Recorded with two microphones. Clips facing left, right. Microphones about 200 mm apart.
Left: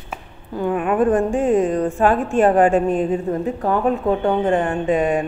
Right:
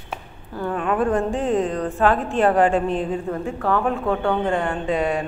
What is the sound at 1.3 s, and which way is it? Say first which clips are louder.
Speech: left 4 dB; 50° left (ahead or behind).